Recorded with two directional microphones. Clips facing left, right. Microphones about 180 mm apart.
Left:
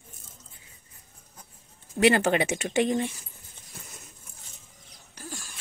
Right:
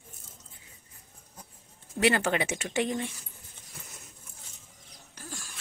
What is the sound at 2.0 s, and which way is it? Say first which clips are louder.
Speech: left 4 dB; 20° left (ahead or behind).